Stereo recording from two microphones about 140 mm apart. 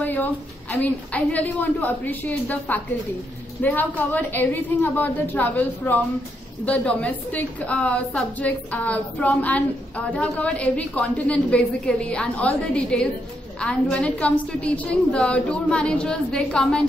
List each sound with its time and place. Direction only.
0.0 s a woman's voice: 15° left (ahead or behind)